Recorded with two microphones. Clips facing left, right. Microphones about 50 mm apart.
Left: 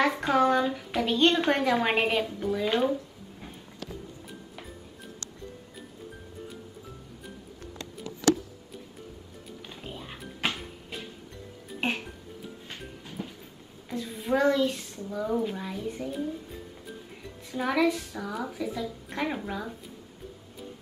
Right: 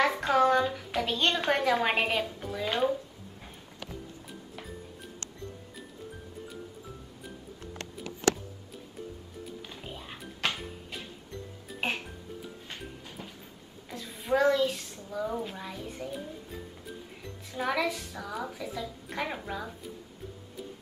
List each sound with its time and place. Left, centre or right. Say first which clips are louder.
0.0 s a woman's voice: left 1 dB; centre
7.7 s music: left 1 dB; right
9.7 s music: left 1 dB; centre
13.8 s a woman's voice: left 2 dB; centre
17.5 s a woman's voice: left 4 dB; centre